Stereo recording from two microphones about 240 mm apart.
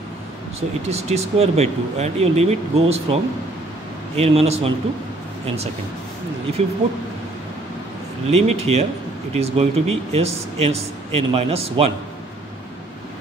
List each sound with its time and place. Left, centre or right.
0.6 s speech: right
4.2 s speech: right
6.6 s speech: right
8.3 s speech: right